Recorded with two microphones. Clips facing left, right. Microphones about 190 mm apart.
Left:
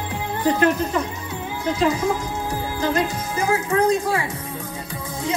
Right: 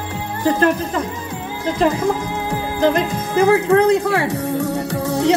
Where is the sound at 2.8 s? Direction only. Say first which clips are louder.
Right 6 dB; 60° right (ahead or behind).